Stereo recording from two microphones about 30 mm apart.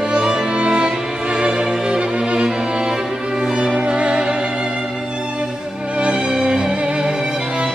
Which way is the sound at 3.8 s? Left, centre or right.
Right.